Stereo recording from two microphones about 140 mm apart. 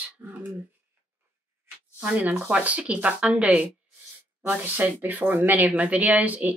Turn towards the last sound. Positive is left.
turn(degrees=-10)  # may be behind; listen again after turning